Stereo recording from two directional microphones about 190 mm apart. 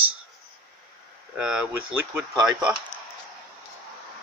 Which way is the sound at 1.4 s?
5° right (ahead or behind).